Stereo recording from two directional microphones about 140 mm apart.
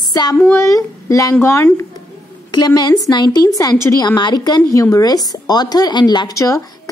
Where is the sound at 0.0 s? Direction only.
30° left (ahead or behind).